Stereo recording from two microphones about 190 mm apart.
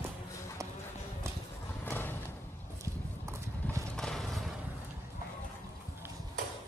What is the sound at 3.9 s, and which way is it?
Mechanisms, centre (ahead or behind).